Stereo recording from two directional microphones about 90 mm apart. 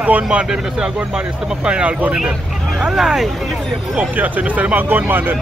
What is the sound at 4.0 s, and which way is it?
Speech, 20° right (ahead or behind).